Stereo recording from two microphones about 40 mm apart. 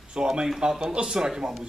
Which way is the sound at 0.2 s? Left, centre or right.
Right.